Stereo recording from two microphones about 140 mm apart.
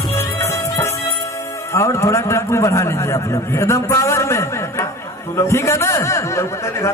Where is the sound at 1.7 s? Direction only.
20° left (ahead or behind).